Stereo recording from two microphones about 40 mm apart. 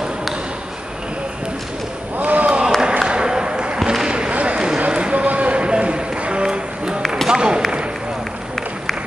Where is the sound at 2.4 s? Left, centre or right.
Right.